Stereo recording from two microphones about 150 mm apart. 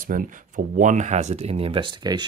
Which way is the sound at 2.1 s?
25° right (ahead or behind).